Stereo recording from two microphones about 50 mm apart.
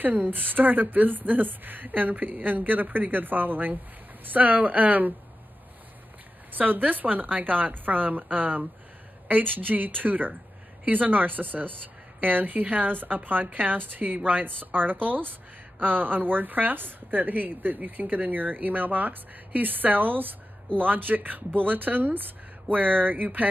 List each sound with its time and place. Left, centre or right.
0.0 s speech: right
6.5 s speech: right